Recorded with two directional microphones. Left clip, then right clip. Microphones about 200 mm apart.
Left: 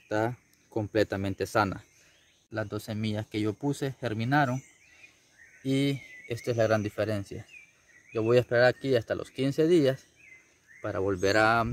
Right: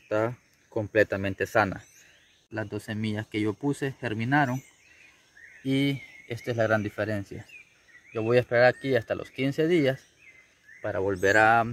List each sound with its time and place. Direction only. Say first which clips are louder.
0.1 s speech: right 2 dB; 15° left (ahead or behind)
5.6 s speech: right 1 dB; 15° left (ahead or behind)